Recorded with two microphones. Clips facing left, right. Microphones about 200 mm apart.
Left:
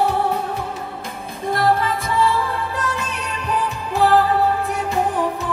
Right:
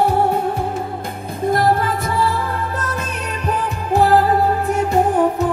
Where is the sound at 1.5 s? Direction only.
45° right (ahead or behind).